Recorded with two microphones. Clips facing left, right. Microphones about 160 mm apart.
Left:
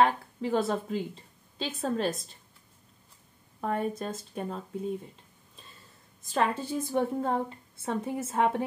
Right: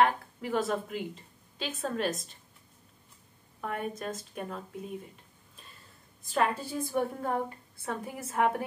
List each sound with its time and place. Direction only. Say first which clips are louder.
0.0 s a woman's voice: left 1 dB; 30° left (ahead or behind)
3.6 s a woman's voice: left 4 dB; 30° left (ahead or behind)
6.2 s a woman's voice: left 1 dB; 20° left (ahead or behind)